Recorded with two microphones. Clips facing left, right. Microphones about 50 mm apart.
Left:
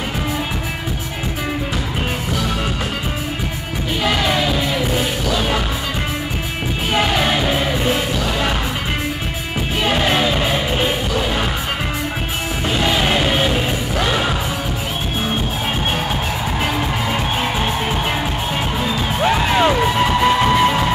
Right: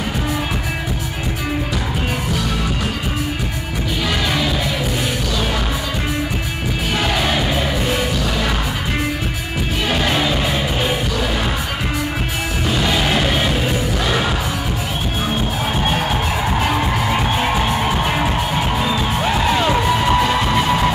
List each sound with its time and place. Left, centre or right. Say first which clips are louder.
9.8 s music: left 2 dB; left
12.8 s music: left 1 dB; centre
19.2 s music: left 4 dB; centre